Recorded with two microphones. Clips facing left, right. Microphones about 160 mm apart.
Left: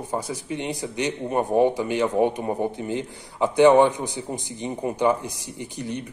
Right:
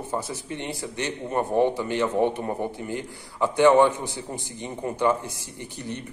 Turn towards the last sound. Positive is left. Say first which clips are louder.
# left 3 dB
turn(degrees=15)  # may be behind; listen again after turning